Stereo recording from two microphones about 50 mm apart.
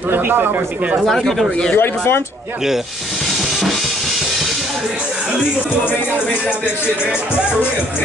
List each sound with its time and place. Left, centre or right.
0.1 s speech: right
1.0 s speech: centre
1.8 s speech: left